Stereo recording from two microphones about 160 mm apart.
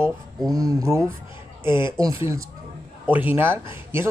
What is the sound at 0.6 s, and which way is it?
Speech, 20° right (ahead or behind).